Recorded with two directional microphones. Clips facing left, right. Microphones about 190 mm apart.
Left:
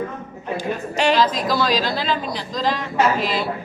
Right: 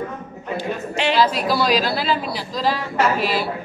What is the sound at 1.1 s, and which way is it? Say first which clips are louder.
A woman's voice: right 4 dB; 10° right (ahead or behind).